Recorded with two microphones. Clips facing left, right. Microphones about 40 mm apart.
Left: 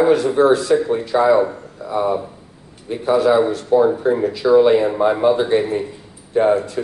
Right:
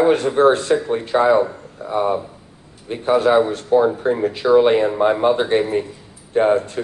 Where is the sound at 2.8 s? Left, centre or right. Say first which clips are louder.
Left 1 dB; right.